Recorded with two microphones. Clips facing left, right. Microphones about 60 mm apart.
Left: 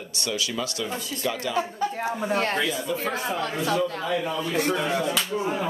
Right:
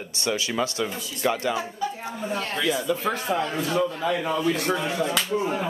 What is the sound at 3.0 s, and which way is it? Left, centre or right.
Speech, right.